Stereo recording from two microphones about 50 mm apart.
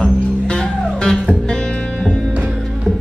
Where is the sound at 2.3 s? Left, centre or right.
Right.